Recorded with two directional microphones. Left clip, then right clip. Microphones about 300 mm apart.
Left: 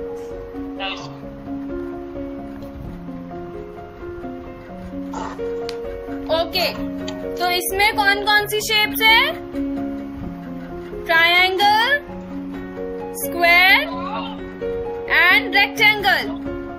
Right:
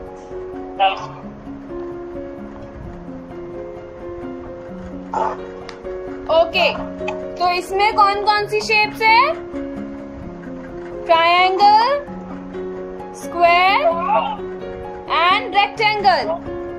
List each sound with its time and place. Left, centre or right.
6.2 s music: centre
7.4 s speech: centre
11.1 s child singing: centre
13.4 s music: centre
13.8 s music: centre
15.0 s music: centre